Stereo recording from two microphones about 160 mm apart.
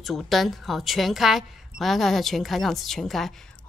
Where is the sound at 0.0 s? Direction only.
Centre (ahead or behind).